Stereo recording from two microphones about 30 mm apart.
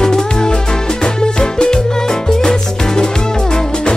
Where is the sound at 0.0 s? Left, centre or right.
Left.